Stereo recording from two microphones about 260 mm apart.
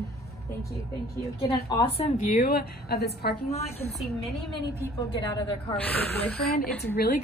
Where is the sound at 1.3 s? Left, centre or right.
Centre; by 3.4 s left.